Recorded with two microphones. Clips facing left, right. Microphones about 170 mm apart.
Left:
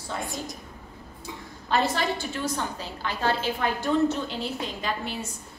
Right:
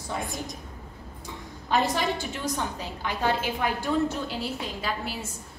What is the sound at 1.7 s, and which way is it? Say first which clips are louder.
A woman's voice: even; 15° right (ahead or behind).